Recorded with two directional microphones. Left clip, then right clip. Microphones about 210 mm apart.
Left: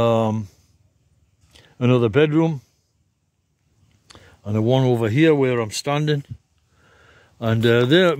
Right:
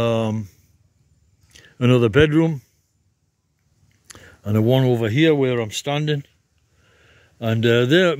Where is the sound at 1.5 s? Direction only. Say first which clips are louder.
Right 1 dB; centre (ahead or behind).